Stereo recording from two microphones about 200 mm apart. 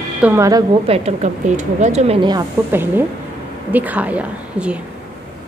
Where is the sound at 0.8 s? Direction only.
30° right (ahead or behind).